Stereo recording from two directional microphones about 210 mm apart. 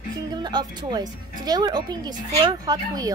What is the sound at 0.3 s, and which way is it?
A woman's voice, 20° right (ahead or behind).